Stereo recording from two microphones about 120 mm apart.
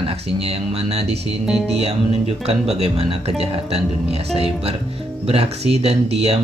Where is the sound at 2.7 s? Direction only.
55° right (ahead or behind).